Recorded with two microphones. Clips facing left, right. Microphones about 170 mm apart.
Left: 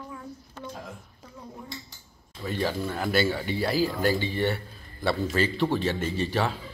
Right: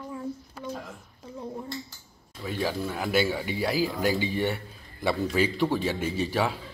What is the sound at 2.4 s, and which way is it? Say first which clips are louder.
A man's voice: left 1 dB; 5° right (ahead or behind).